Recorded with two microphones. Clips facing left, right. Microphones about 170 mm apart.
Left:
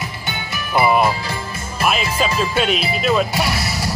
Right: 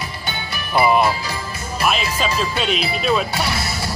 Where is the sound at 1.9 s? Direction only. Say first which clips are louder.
Left 2 dB; 5° left (ahead or behind).